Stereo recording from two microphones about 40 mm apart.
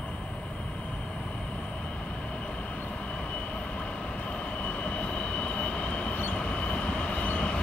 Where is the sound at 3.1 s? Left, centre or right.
Left.